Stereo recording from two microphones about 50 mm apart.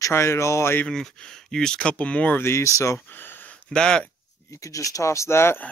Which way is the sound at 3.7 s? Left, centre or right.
Centre.